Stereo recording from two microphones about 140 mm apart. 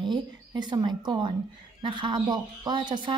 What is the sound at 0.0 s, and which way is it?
Speech, 30° right (ahead or behind).